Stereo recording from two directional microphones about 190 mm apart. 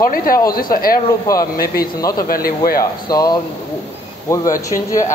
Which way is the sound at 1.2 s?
20° left (ahead or behind).